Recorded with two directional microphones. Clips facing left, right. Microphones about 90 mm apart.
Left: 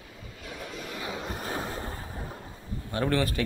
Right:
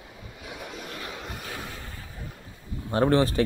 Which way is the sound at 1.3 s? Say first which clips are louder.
Left 5 dB; 30° left (ahead or behind).